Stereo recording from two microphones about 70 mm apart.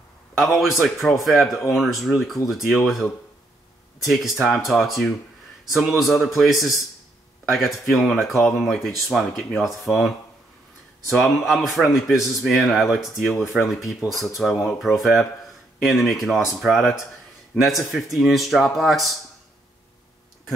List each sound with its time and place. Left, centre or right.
0.4 s speech: centre